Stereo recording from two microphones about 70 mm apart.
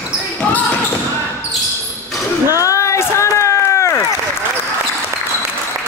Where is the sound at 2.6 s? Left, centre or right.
Left.